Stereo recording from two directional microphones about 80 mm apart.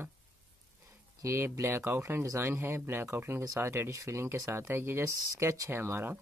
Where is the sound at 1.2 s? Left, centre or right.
Right.